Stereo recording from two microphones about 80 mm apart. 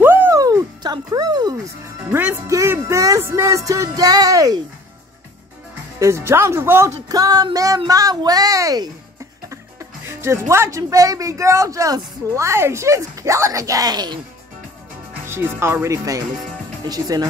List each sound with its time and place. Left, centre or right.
0.0 s music: right
0.3 s music: right
2.0 s speech: centre
2.4 s speech: right
3.9 s speech: right
5.9 s speech: right
7.1 s speech: right
9.5 s music: right
10.5 s speech: right
15.2 s speech: right
16.8 s speech: right